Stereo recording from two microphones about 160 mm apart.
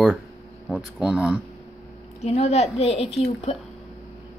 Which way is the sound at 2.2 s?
40° left (ahead or behind).